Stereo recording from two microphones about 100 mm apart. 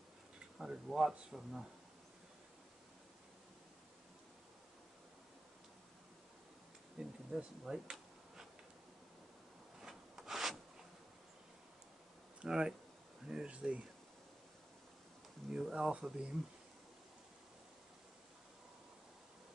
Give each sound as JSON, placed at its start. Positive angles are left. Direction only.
{"t": 0.6, "sound": "speech", "side_deg": -5}
{"t": 7.0, "sound": "bee", "side_deg": -5}
{"t": 9.8, "sound": "rub", "side_deg": -5}
{"t": 12.4, "sound": "speech", "side_deg": -5}
{"t": 15.5, "sound": "speech", "side_deg": -5}